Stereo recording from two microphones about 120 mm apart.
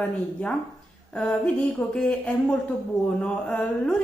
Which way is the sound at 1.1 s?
10° left (ahead or behind).